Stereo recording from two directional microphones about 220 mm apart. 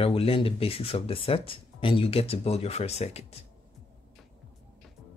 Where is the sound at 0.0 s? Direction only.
25° left (ahead or behind).